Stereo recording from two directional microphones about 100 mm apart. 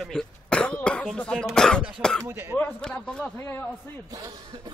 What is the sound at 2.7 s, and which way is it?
Speech, 10° left (ahead or behind).